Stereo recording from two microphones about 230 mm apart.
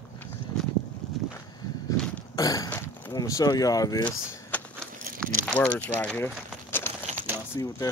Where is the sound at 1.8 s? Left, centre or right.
Centre.